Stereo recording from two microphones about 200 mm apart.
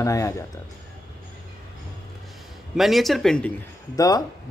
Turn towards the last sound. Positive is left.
turn(degrees=20)  # may be behind; listen again after turning